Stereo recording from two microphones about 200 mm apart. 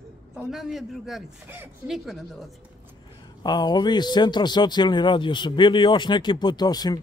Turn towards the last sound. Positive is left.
turn(degrees=20)  # may be behind; listen again after turning